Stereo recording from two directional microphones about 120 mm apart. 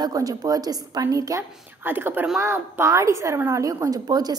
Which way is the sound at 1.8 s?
15° right (ahead or behind).